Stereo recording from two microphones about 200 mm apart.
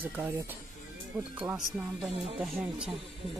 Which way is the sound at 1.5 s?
Centre (ahead or behind).